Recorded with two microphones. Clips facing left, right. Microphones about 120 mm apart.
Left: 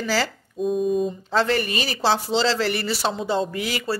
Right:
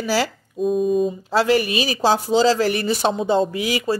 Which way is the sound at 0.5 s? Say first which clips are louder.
Right 3 dB; centre (ahead or behind).